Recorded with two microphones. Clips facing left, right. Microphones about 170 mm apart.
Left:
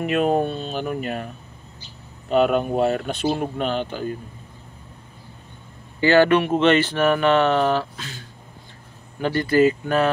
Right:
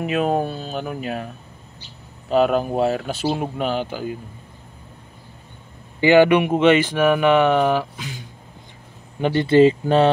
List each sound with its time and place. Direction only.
0.0 s speech: centre (ahead or behind)
5.9 s speech: 15° right (ahead or behind)